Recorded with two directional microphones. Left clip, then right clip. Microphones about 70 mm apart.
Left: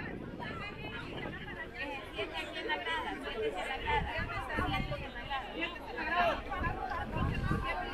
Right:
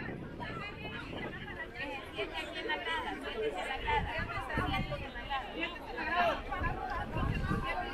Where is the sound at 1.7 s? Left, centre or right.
Right.